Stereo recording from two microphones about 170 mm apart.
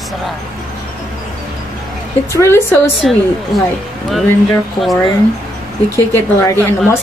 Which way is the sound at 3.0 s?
Centre (ahead or behind).